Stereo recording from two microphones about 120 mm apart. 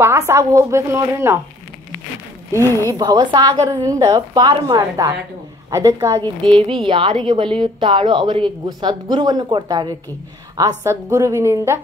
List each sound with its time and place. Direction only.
0.0 s a woman's voice: 20° right (ahead or behind)
2.6 s speech: 20° left (ahead or behind)
2.9 s a woman's voice: 30° right (ahead or behind)
6.4 s a woman's voice: 45° right (ahead or behind); by 11.8 s 25° right (ahead or behind)